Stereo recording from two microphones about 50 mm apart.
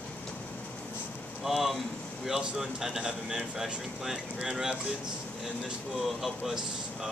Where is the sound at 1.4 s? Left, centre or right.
Centre.